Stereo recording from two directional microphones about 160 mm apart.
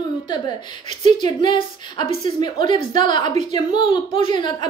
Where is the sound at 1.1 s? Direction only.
30° left (ahead or behind).